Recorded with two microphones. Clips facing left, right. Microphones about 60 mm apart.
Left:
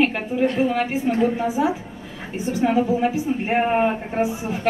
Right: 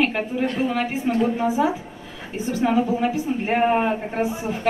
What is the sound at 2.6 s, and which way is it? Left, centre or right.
A woman's voice, centre.